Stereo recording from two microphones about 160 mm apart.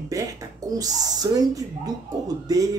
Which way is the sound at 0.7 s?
25° right (ahead or behind).